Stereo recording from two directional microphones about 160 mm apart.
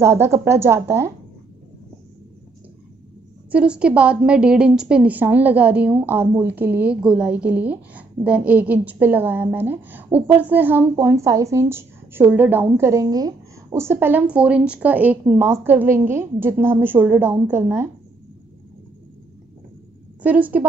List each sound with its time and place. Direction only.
0.0 s a woman's voice: 15° right (ahead or behind)
3.5 s a woman's voice: 5° right (ahead or behind)
20.2 s a woman's voice: 10° right (ahead or behind)